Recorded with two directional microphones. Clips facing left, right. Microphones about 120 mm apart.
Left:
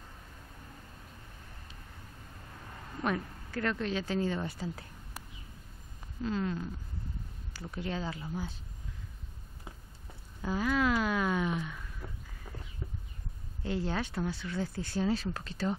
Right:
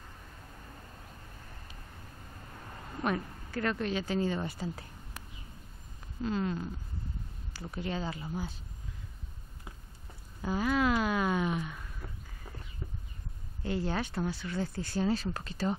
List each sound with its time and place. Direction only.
3.0 s speech: 5° right (ahead or behind)
6.2 s speech: 10° right (ahead or behind)
10.4 s speech: 5° right (ahead or behind)
12.0 s a sound: centre (ahead or behind)
13.6 s speech: centre (ahead or behind)